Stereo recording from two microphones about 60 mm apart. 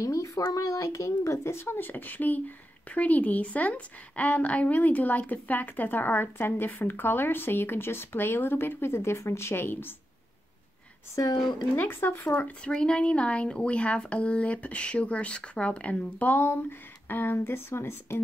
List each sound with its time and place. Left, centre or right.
0.0 s speech: left
0.5 s a woman's voice: left
11.7 s a woman's voice: left
12.4 s speech: left
12.7 s a woman's voice: centre; by 18.2 s left